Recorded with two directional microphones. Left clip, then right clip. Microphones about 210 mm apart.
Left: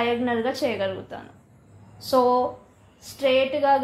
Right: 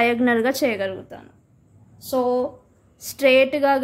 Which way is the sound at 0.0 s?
45° right (ahead or behind).